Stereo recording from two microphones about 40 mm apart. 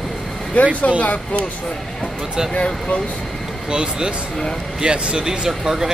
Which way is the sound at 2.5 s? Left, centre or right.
Left.